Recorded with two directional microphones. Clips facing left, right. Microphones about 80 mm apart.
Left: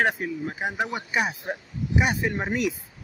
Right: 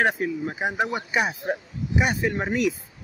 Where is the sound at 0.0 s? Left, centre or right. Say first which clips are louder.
Right 2 dB; centre.